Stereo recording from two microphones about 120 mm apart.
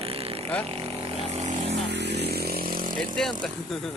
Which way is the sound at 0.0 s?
55° right (ahead or behind).